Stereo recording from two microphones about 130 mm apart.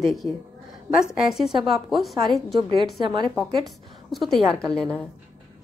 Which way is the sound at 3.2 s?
Centre (ahead or behind).